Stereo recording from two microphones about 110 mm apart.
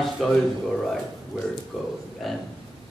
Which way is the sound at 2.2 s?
Centre (ahead or behind).